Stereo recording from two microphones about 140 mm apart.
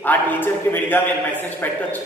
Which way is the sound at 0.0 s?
15° left (ahead or behind).